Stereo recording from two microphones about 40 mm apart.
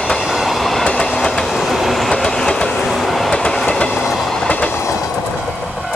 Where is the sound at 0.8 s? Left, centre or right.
Centre.